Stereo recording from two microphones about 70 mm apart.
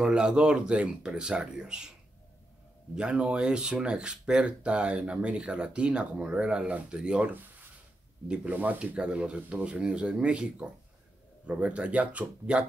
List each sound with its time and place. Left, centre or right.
0.0 s speech: centre
3.0 s speech: centre